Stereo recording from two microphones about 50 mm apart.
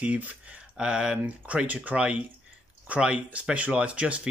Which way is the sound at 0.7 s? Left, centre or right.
Centre.